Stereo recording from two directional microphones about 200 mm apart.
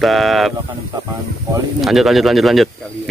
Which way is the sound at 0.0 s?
Centre (ahead or behind).